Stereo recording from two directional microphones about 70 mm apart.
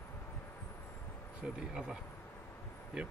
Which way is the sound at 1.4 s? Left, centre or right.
Centre.